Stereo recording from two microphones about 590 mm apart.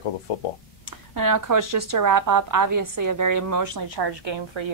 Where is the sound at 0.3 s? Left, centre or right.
Left.